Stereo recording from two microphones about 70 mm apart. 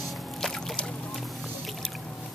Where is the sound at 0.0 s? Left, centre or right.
Centre.